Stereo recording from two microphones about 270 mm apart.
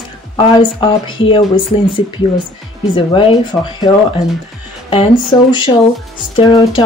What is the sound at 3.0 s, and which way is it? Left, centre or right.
Speech, centre.